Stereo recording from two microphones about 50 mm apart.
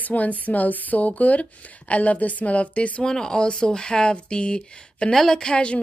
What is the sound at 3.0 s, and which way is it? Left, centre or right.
A woman's voice, centre.